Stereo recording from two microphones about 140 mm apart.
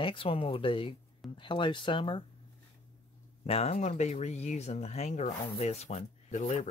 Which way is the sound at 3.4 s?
45° left (ahead or behind).